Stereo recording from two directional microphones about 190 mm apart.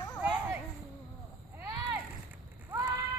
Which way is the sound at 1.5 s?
10° right (ahead or behind).